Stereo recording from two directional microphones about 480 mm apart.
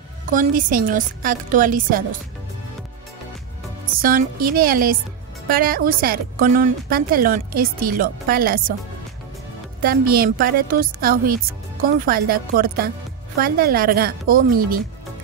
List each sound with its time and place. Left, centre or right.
0.3 s speech: centre
3.8 s speech: centre
9.8 s speech: centre